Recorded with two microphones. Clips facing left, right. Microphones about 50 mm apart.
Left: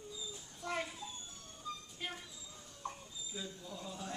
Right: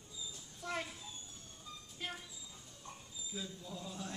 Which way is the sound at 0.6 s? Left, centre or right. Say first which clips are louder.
Left 2 dB; centre.